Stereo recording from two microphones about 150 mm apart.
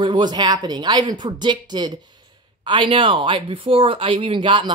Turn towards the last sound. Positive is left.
turn(degrees=-30)  # may be behind; listen again after turning